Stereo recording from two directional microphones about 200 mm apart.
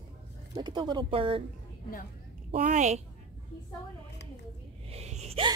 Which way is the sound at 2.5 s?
40° right (ahead or behind).